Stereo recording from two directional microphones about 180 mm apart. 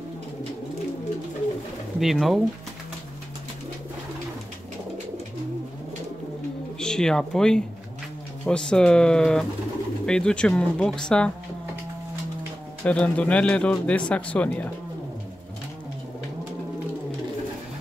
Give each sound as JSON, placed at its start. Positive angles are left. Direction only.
{"t": 2.0, "sound": "speech", "side_deg": 0}
{"t": 6.8, "sound": "speech", "side_deg": 5}
{"t": 12.8, "sound": "speech", "side_deg": 5}